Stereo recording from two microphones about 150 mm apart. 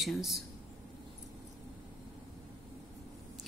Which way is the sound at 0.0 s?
Centre (ahead or behind).